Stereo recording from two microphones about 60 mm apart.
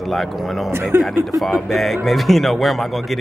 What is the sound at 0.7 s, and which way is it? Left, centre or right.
Speech, right.